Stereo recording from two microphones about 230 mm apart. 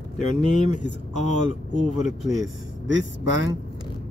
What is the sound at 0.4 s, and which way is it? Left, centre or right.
Speech, left.